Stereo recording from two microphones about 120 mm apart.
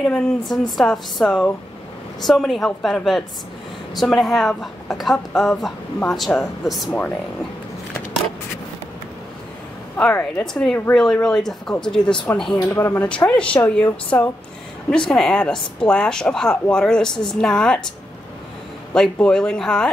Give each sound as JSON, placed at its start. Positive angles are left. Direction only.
{"t": 0.0, "sound": "speech", "side_deg": 5}
{"t": 9.9, "sound": "speech", "side_deg": 15}
{"t": 10.4, "sound": "speech", "side_deg": 5}
{"t": 12.5, "sound": "speech", "side_deg": 35}
{"t": 12.8, "sound": "speech", "side_deg": 20}
{"t": 13.3, "sound": "speech", "side_deg": 10}
{"t": 14.1, "sound": "speech", "side_deg": 20}
{"t": 14.9, "sound": "speech", "side_deg": 5}
{"t": 18.9, "sound": "speech", "side_deg": 5}